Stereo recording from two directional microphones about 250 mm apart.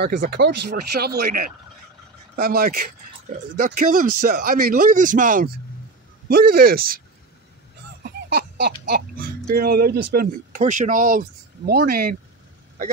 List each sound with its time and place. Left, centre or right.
0.0 s speech: right
8.4 s a sound: right
9.6 s speech: right